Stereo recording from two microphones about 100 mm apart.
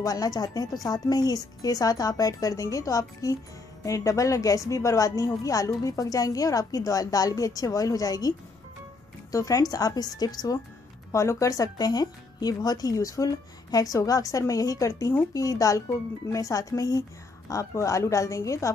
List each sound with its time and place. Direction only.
0.0 s a woman's voice: 40° left (ahead or behind)